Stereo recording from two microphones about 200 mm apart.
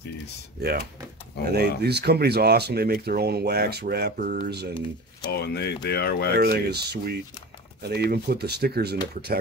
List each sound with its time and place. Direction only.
0.6 s speech: 50° right (ahead or behind)
5.2 s speech: 55° left (ahead or behind)
6.3 s speech: 55° right (ahead or behind)